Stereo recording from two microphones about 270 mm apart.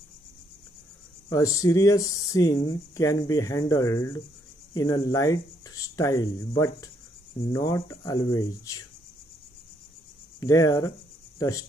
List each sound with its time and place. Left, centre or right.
1.3 s speech: centre
10.4 s speech: centre